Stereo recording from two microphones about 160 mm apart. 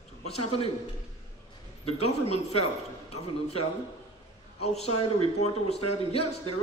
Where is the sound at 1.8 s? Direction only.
40° left (ahead or behind).